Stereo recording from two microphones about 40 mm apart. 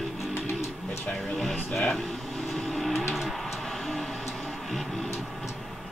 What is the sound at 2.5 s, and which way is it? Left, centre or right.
Vehicle, centre.